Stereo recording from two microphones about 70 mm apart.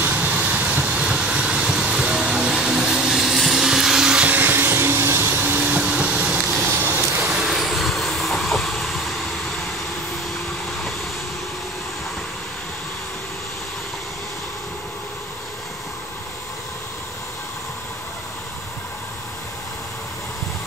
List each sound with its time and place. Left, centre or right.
0.0 s vehicle: right
4.3 s a sound: right
5.4 s vehicle: right
6.6 s vehicle: right
7.2 s train: centre